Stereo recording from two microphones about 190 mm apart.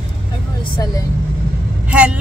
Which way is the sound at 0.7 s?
20° left (ahead or behind).